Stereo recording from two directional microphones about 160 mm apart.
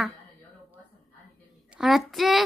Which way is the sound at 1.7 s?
Centre (ahead or behind).